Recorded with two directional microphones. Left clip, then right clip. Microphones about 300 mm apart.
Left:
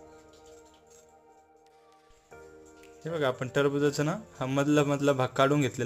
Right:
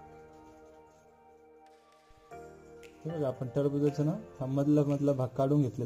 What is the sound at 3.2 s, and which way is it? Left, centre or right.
Speech, left.